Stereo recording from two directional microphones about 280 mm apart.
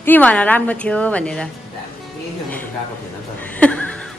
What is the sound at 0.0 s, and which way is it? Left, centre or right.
Speech, centre.